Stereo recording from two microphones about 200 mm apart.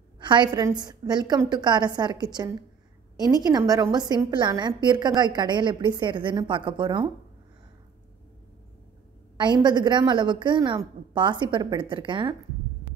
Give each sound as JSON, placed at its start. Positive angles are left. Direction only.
{"t": 0.2, "sound": "a woman's voice", "side_deg": -25}
{"t": 9.4, "sound": "a woman's voice", "side_deg": -20}